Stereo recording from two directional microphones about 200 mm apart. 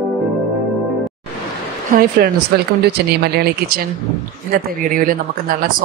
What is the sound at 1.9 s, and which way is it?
Speech, 45° right (ahead or behind).